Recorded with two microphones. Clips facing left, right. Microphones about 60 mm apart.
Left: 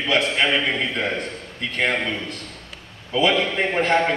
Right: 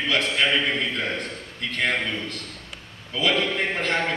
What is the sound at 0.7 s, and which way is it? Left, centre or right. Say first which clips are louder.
Speech: left 2 dB; centre.